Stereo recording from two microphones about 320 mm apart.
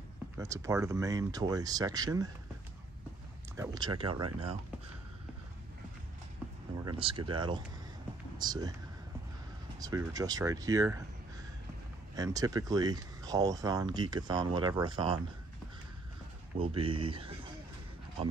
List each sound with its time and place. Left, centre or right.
0.4 s speech: centre
3.5 s speech: centre
6.8 s speech: centre
9.8 s speech: centre
12.2 s speech: centre
16.5 s speech: centre